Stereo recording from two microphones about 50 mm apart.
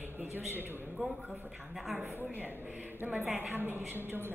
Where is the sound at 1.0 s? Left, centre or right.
Centre.